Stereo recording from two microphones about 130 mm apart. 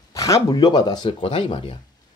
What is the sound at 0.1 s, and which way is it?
Speech, 25° left (ahead or behind).